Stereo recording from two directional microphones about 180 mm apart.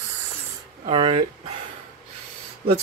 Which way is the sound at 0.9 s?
30° right (ahead or behind).